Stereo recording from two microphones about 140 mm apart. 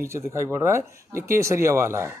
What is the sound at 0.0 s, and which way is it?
Speech, 20° right (ahead or behind).